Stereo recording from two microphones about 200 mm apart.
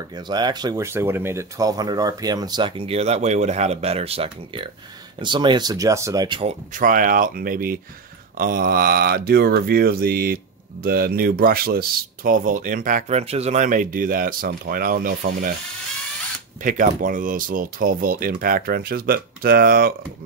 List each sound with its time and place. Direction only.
0.1 s speech: 20° right (ahead or behind)
6.7 s speech: 45° right (ahead or behind)
16.6 s speech: 40° right (ahead or behind)